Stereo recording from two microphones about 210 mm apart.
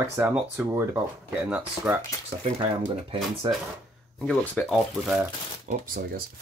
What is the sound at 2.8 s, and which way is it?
Speech, 25° right (ahead or behind).